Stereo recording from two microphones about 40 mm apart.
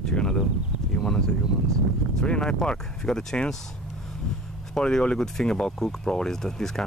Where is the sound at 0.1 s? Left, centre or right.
Centre.